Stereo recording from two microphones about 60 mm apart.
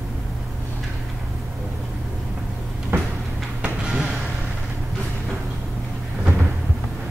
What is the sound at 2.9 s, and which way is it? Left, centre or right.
Tick-tock, right.